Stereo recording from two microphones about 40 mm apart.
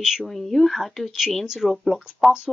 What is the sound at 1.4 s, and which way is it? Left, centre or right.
Speech, centre.